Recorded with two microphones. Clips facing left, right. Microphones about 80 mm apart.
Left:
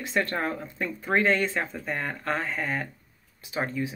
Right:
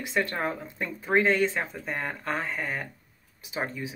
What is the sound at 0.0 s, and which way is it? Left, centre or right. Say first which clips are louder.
Speech: left 1 dB; centre.